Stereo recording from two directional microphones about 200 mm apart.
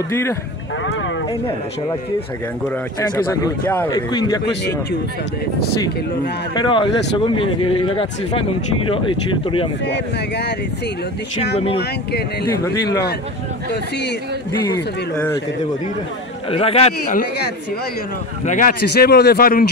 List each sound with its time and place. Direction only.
0.1 s speech: 15° left (ahead or behind)
3.0 s speech: 10° left (ahead or behind)
3.9 s speech: 20° left (ahead or behind)
6.5 s speech: 25° left (ahead or behind)
9.8 s speech: 55° left (ahead or behind)
12.4 s speech: 15° left (ahead or behind)
16.4 s speech: 30° left (ahead or behind)
18.4 s speech: 40° left (ahead or behind)